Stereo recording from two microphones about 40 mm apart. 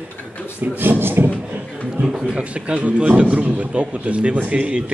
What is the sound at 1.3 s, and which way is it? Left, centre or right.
A man's voice, right.